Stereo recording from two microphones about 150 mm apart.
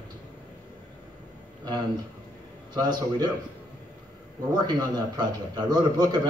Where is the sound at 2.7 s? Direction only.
30° right (ahead or behind).